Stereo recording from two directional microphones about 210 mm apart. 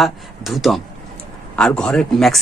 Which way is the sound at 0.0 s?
Centre (ahead or behind).